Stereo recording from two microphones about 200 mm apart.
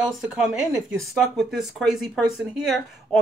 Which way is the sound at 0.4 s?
5° right (ahead or behind).